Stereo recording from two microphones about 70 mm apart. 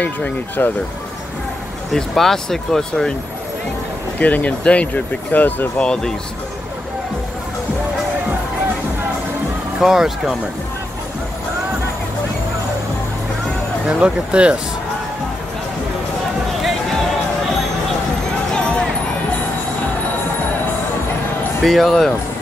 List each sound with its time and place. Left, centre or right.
0.0 s speech: left
1.9 s speech: centre
4.2 s speech: left
9.8 s speech: centre
13.8 s speech: centre
18.5 s music: centre
21.6 s speech: centre